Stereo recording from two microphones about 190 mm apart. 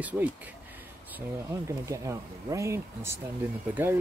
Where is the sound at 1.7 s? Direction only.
15° right (ahead or behind).